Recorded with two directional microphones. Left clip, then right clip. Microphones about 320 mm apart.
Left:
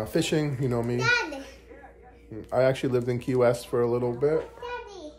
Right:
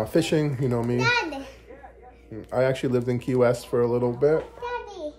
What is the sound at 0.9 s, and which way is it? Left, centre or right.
Speech, right.